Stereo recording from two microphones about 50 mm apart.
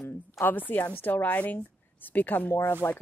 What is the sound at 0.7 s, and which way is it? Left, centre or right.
A woman's voice, left.